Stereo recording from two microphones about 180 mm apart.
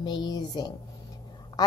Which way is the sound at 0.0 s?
25° left (ahead or behind).